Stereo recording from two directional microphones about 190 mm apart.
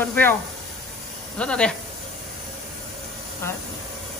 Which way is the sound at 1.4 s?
5° left (ahead or behind).